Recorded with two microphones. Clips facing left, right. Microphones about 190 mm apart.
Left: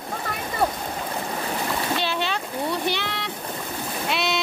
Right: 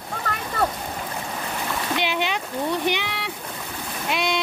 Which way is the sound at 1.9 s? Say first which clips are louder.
Right 1 dB; 15° right (ahead or behind).